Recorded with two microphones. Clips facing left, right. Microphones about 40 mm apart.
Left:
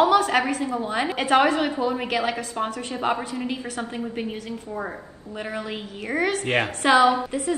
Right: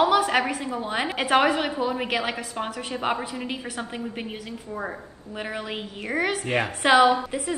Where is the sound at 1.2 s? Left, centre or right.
Centre.